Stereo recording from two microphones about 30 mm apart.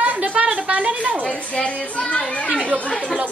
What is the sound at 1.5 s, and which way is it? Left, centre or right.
Speech, left.